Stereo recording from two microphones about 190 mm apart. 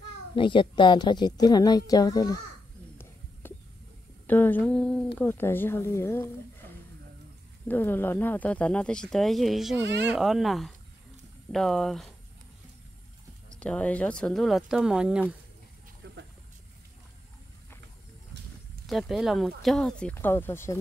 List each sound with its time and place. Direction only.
0.4 s a woman's voice: 25° left (ahead or behind)
4.3 s speech: 10° left (ahead or behind)
7.6 s speech: 10° left (ahead or behind)
9.8 s speech: 65° right (ahead or behind)
10.1 s speech: centre (ahead or behind)
13.6 s speech: 5° left (ahead or behind)
18.9 s speech: centre (ahead or behind)